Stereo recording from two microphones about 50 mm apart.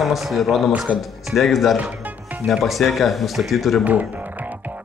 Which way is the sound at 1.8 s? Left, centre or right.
Right.